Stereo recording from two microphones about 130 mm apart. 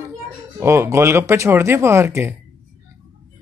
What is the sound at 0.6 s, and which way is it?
Speech, 20° right (ahead or behind).